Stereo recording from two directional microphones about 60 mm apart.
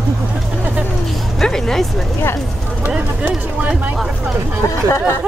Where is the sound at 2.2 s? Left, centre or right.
Left.